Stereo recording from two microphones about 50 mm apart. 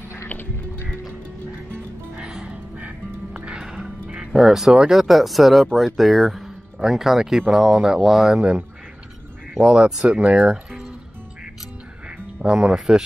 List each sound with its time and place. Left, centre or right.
2.4 s music: right
3.5 s music: centre
3.8 s music: right
4.3 s speech: centre
12.4 s speech: centre